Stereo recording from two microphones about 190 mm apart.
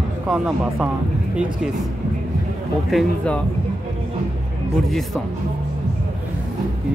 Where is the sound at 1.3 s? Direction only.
5° right (ahead or behind).